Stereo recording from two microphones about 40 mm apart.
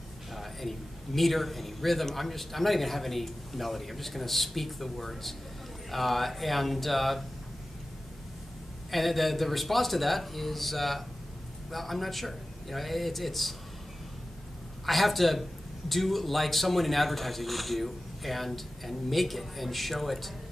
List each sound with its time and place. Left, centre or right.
0.3 s a man's voice: centre
8.9 s a man's voice: centre
14.9 s a man's voice: centre